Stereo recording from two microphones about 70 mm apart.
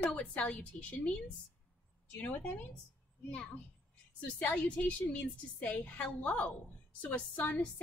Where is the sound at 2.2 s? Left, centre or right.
Left.